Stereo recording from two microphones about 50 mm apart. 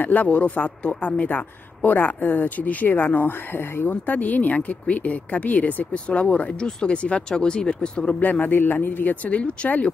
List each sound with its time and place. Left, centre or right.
0.0 s a man's voice: left
4.0 s speech: left
8.2 s a man's voice: left